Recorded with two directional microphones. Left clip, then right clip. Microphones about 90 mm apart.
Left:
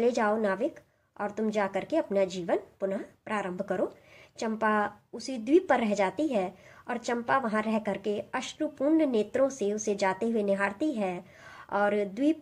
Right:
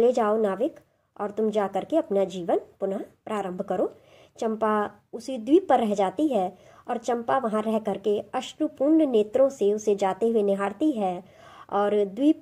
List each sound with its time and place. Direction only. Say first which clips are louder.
0.0 s a woman's voice: right 5 dB; 35° right (ahead or behind)